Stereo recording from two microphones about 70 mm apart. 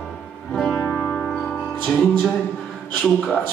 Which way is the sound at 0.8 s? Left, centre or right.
Left.